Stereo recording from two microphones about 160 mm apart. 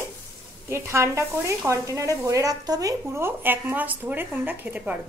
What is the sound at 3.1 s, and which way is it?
Sizzle, 15° right (ahead or behind).